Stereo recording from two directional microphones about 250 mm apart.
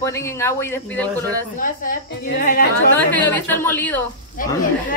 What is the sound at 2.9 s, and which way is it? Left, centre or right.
Speech, centre.